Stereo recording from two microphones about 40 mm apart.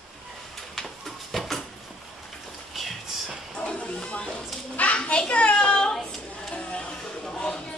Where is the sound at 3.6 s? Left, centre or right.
Left.